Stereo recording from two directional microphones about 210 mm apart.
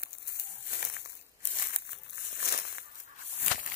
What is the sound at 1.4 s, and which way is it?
Crumpling, 45° left (ahead or behind).